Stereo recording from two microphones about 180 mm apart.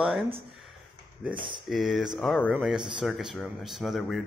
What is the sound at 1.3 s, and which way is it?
Speech, 25° right (ahead or behind).